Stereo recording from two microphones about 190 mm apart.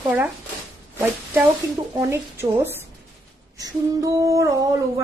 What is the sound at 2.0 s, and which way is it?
Speech, 15° right (ahead or behind).